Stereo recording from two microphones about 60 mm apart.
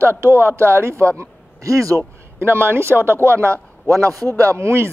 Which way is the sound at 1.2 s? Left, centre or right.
Right.